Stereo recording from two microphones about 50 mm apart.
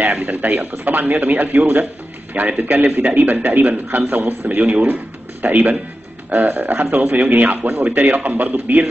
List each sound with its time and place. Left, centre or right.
0.0 s speech: right
4.5 s speech: right